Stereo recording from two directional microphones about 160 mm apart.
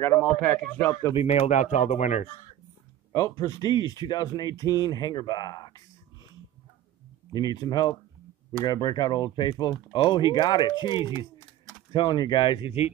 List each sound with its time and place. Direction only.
0.2 s speech: 10° left (ahead or behind)
1.1 s speech: 45° left (ahead or behind)
3.1 s speech: 20° left (ahead or behind)
7.3 s speech: 25° left (ahead or behind)